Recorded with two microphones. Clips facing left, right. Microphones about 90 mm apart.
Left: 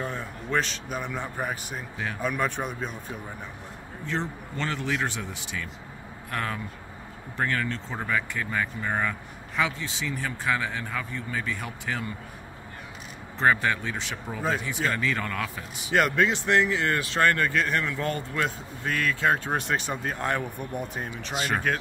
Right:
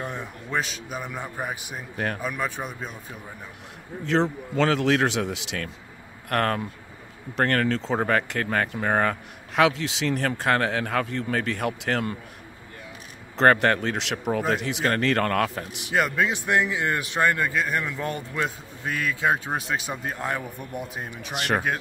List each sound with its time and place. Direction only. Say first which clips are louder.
0.0 s speech: even; 15° right (ahead or behind)
4.0 s a man's voice: right 8 dB; 90° right
6.3 s speech: right 7 dB; 60° right (ahead or behind)
7.3 s speech: right 6 dB; 75° right (ahead or behind)
13.4 s speech: right 5 dB; 65° right (ahead or behind)
15.9 s speech: left 1 dB; 5° right (ahead or behind)